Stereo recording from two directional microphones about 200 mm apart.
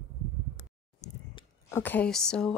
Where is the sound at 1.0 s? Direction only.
35° left (ahead or behind).